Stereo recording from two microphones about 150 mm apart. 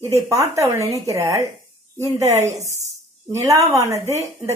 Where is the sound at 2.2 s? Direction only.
50° right (ahead or behind).